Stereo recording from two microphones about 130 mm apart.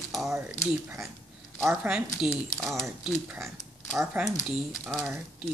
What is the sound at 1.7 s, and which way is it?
Speech, 10° right (ahead or behind).